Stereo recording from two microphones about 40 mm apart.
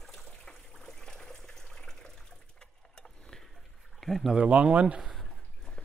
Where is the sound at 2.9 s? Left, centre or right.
Centre.